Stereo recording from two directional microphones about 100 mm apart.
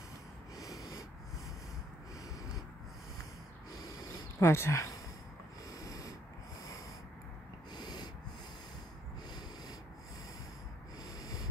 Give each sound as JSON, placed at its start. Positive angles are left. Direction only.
{"t": 0.6, "sound": "snort", "side_deg": 35}
{"t": 3.7, "sound": "owl", "side_deg": 40}
{"t": 4.4, "sound": "speech", "side_deg": 25}
{"t": 5.7, "sound": "snort", "side_deg": 35}
{"t": 7.7, "sound": "snort", "side_deg": 45}